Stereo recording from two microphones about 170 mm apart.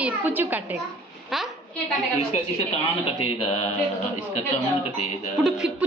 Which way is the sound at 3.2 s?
35° left (ahead or behind).